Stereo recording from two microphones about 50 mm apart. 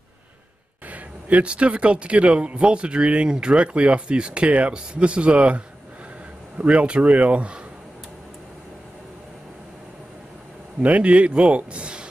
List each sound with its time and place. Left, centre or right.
0.8 s speech: right
6.6 s speech: right
10.8 s speech: right